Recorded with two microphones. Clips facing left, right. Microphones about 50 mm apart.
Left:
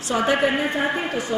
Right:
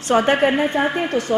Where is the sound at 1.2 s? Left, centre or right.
Right.